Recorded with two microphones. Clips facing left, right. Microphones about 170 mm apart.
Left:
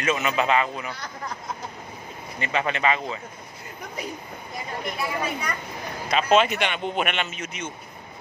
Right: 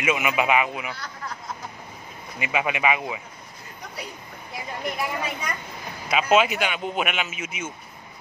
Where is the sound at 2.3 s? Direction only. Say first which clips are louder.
Even; 10° right (ahead or behind).